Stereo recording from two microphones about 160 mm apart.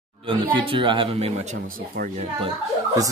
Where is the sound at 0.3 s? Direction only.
30° right (ahead or behind).